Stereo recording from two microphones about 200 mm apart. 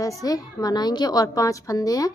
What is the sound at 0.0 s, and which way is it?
A woman's voice, 15° left (ahead or behind).